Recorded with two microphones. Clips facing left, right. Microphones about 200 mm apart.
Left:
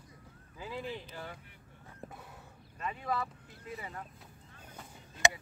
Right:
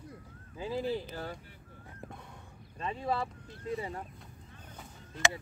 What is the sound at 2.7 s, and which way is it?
Speech, 30° right (ahead or behind).